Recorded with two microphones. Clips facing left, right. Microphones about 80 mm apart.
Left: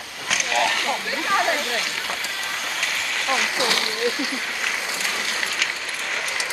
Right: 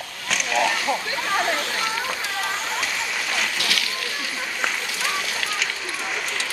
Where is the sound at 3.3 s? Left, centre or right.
Centre.